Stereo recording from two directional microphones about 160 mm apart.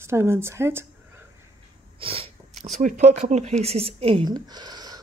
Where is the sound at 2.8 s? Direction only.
50° right (ahead or behind).